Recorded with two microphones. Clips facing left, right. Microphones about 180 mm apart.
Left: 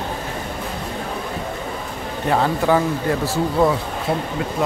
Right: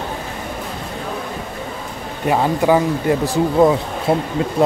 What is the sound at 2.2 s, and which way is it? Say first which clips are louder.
Speech: right 3 dB; 15° right (ahead or behind).